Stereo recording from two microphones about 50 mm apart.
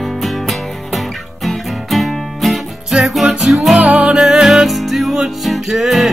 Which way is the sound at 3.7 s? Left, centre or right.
Right.